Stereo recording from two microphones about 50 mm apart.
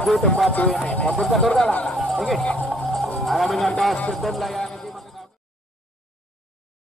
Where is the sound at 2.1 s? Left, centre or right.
Centre.